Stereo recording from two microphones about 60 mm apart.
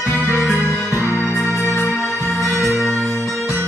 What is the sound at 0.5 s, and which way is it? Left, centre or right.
Music, left.